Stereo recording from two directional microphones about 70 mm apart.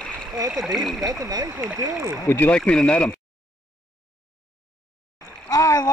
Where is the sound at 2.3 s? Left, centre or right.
Left.